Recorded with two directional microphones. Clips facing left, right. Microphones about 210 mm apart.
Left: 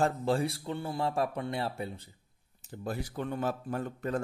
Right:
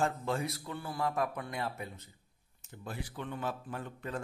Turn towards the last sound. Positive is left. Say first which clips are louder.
# left 7 dB
turn(degrees=45)  # may be behind; listen again after turning